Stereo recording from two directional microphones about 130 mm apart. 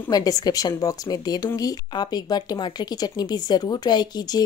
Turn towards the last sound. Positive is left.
turn(degrees=30)  # may be behind; listen again after turning